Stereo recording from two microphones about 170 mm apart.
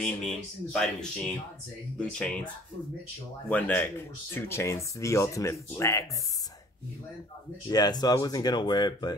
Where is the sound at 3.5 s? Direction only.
10° left (ahead or behind).